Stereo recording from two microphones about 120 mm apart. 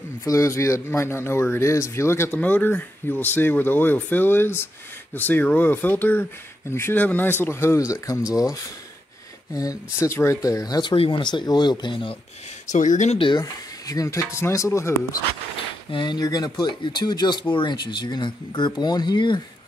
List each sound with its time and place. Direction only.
0.2 s speech: 25° left (ahead or behind)
9.5 s speech: 30° left (ahead or behind); by 12.2 s 45° left (ahead or behind)
12.6 s speech: 90° left
13.4 s speech: 30° left (ahead or behind)
15.9 s speech: 40° left (ahead or behind)